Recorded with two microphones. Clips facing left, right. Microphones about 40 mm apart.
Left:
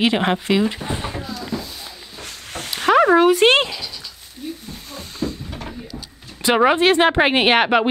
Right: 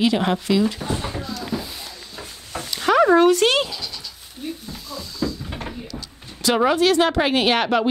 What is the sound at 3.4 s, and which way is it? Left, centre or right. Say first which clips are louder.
Speech: left 4 dB; left.